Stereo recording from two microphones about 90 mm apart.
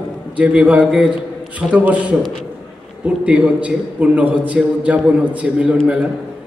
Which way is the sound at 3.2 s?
15° right (ahead or behind).